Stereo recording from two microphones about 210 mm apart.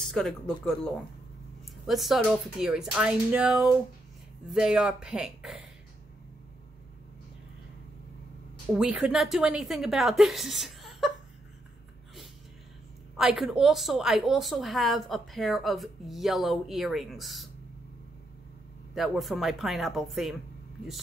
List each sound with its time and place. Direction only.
0.0 s speech: centre (ahead or behind)
1.9 s a woman's voice: centre (ahead or behind)
8.7 s a woman's voice: 5° right (ahead or behind)
13.2 s a woman's voice: centre (ahead or behind)
18.9 s a woman's voice: centre (ahead or behind)